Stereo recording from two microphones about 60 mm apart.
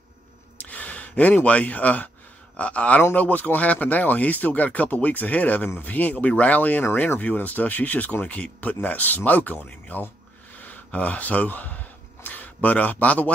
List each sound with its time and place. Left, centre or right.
0.6 s a sound: left
2.5 s speech: left
6.9 s speech: left
7.2 s speech: left
10.6 s a sound: left
12.6 s speech: left